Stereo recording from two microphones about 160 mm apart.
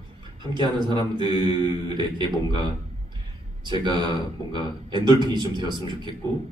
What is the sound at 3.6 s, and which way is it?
A man's voice, 30° right (ahead or behind).